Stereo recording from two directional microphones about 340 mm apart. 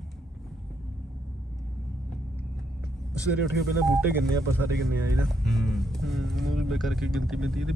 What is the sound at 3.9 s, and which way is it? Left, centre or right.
Speech, centre.